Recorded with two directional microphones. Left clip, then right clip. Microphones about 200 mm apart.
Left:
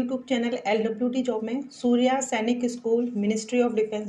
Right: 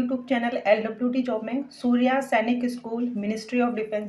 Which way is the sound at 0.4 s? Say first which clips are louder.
Right 4 dB; 25° left (ahead or behind).